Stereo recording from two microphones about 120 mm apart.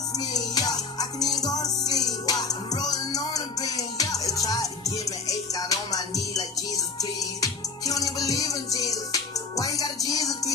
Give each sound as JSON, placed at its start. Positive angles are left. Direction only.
{"t": 0.2, "sound": "music", "side_deg": 35}